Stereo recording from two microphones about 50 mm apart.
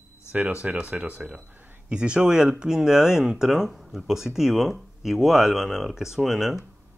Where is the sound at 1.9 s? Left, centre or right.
Right; by 6.6 s centre.